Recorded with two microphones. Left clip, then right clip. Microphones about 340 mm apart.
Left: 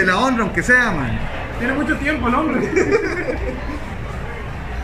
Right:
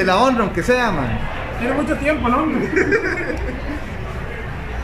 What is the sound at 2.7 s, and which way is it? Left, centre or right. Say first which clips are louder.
Speech: even; centre.